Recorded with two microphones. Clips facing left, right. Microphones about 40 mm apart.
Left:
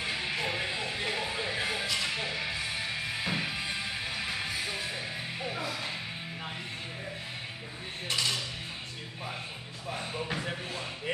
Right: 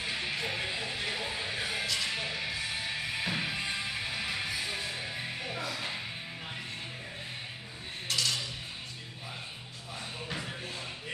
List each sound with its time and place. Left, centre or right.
0.0 s music: centre
0.6 s music: centre
1.0 s music: centre
3.3 s music: centre
8.1 s cutlery: left